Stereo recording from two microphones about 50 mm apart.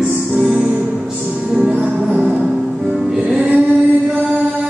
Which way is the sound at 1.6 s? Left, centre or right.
Right.